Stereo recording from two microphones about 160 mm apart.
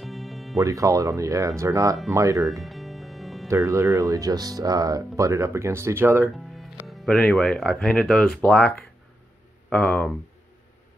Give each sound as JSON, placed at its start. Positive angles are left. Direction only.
{"t": 0.0, "sound": "music", "side_deg": 0}
{"t": 0.6, "sound": "speech", "side_deg": -20}
{"t": 2.6, "sound": "music", "side_deg": 0}
{"t": 3.4, "sound": "speech", "side_deg": -20}
{"t": 6.3, "sound": "music", "side_deg": 0}
{"t": 6.9, "sound": "speech", "side_deg": 0}